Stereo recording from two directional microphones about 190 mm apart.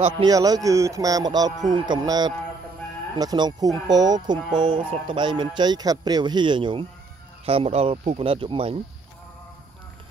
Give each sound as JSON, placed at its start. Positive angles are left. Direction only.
{"t": 0.0, "sound": "a man's voice", "side_deg": -20}